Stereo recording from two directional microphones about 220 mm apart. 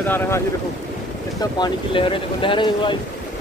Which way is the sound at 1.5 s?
20° left (ahead or behind).